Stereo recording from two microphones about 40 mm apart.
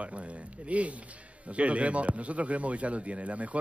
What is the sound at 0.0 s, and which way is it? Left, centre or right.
Speech, right.